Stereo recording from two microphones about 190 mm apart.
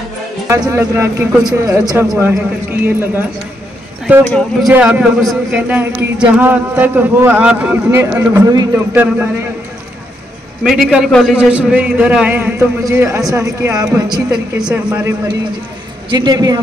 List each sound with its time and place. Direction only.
0.5 s speech: 15° right (ahead or behind)
4.3 s speech: 5° left (ahead or behind)
10.6 s speech: centre (ahead or behind); by 14.2 s 20° right (ahead or behind)
14.3 s speech: 5° right (ahead or behind)
16.1 s a man's voice: 20° right (ahead or behind)